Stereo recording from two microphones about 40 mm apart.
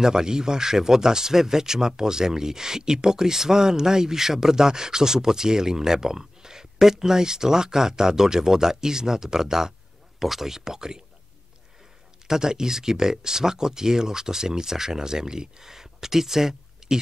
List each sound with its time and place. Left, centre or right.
0.0 s speech: centre
12.3 s speech: centre